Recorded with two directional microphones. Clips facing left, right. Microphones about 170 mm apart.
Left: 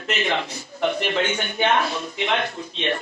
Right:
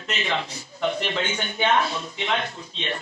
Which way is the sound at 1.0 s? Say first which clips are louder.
Left 4 dB; 45° left (ahead or behind).